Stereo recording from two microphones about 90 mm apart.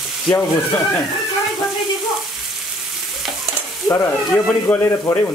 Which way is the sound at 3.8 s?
25° left (ahead or behind).